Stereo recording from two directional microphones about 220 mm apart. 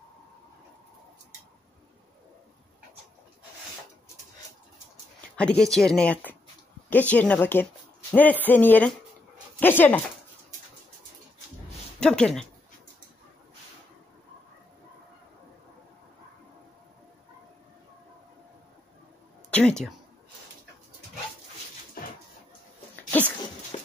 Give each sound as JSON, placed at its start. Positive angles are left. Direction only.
{"t": 5.3, "sound": "speech", "side_deg": 5}
{"t": 12.0, "sound": "speech", "side_deg": 5}
{"t": 19.5, "sound": "speech", "side_deg": 5}
{"t": 23.7, "sound": "clip-clop", "side_deg": 25}